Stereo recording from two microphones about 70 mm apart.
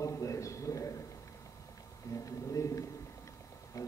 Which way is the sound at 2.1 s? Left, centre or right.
Left.